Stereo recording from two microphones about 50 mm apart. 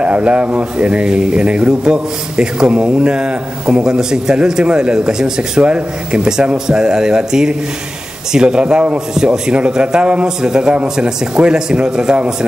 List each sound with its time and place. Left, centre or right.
0.0 s speech: right